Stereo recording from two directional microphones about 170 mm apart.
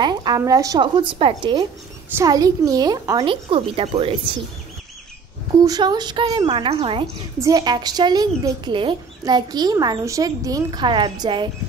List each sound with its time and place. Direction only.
0.0 s speech: 25° right (ahead or behind)
3.4 s a woman's voice: 35° right (ahead or behind)
5.7 s a woman's voice: 25° right (ahead or behind)
7.3 s speech: 20° right (ahead or behind)